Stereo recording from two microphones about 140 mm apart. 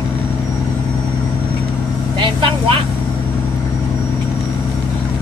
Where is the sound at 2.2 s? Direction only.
40° right (ahead or behind).